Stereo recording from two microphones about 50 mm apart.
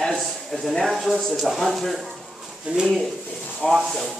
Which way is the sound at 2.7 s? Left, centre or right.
Centre.